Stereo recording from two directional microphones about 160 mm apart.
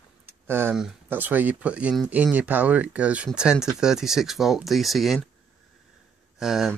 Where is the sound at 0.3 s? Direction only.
15° right (ahead or behind).